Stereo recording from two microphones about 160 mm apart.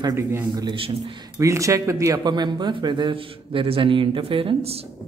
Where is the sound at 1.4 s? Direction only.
20° right (ahead or behind); by 4.9 s 40° right (ahead or behind).